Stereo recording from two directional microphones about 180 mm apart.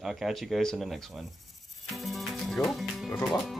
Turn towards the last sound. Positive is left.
turn(degrees=0)  # may be behind; listen again after turning